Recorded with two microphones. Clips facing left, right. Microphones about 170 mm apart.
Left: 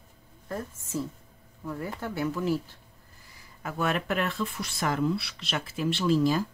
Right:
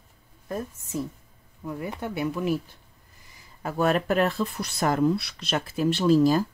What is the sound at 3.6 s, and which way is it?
Speech, 40° right (ahead or behind).